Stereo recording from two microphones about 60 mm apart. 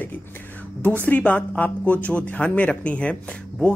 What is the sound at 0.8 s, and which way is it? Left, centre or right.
Speech, left.